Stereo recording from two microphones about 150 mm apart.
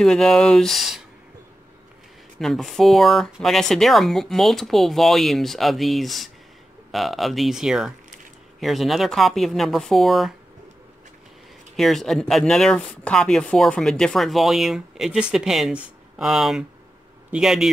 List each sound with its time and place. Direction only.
0.0 s speech: 5° left (ahead or behind)
2.4 s speech: centre (ahead or behind)
11.7 s speech: centre (ahead or behind)